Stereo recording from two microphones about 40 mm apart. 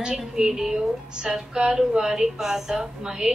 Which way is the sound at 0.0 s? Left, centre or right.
Centre.